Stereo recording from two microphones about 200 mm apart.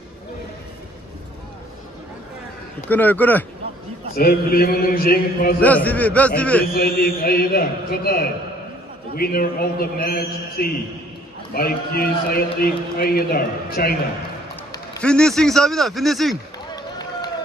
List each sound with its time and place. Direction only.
2.9 s a man's voice: 10° left (ahead or behind)
4.1 s a man's voice: 50° left (ahead or behind)
5.6 s a man's voice: 10° left (ahead or behind)
6.6 s a man's voice: 45° left (ahead or behind)
15.0 s a man's voice: 5° left (ahead or behind)
16.7 s run: 20° left (ahead or behind)